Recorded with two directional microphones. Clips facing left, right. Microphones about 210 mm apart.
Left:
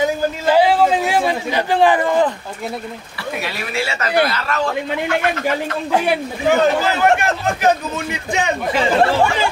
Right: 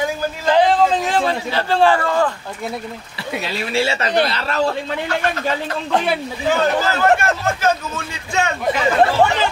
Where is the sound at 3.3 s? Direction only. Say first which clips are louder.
Right 4 dB; 25° right (ahead or behind).